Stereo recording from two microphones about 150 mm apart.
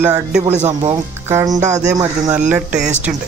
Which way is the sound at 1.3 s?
20° right (ahead or behind).